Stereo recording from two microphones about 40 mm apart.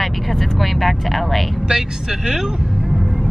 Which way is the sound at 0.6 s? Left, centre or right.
Centre.